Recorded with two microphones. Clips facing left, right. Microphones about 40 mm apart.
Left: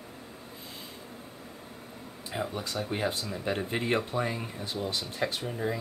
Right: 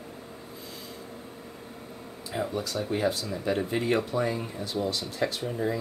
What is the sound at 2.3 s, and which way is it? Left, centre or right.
Speech, centre.